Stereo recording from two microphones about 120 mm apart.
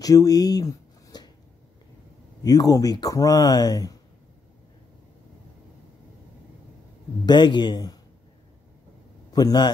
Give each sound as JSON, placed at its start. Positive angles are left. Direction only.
{"t": 0.0, "sound": "a sound", "side_deg": 30}
{"t": 2.4, "sound": "speech", "side_deg": 30}
{"t": 7.2, "sound": "speech", "side_deg": 40}
{"t": 9.3, "sound": "a man's voice", "side_deg": 35}